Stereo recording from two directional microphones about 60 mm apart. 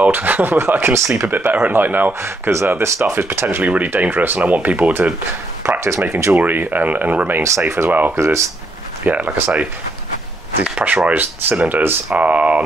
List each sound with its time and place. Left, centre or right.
0.0 s speech: right
1.2 s speech: right
2.2 s speech: right
3.6 s speech: right
5.6 s speech: right
6.3 s speech: right
10.7 s speech: right